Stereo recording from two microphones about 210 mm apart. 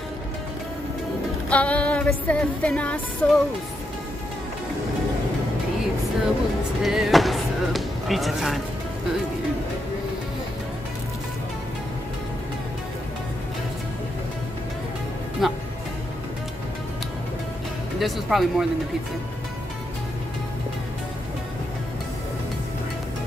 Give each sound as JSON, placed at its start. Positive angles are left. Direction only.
{"t": 1.5, "sound": "music", "side_deg": 5}
{"t": 6.8, "sound": "speech", "side_deg": 0}
{"t": 15.4, "sound": "music", "side_deg": 0}
{"t": 17.9, "sound": "speech", "side_deg": 0}